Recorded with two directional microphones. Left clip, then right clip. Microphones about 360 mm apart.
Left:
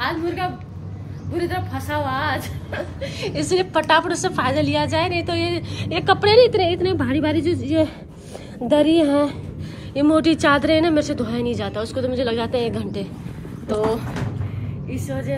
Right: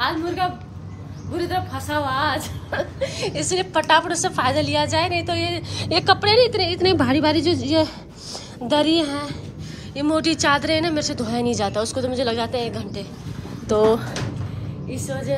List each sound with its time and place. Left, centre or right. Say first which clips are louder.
0.0 s a woman's voice: right 1 dB; centre
14.9 s speech: right 1 dB; centre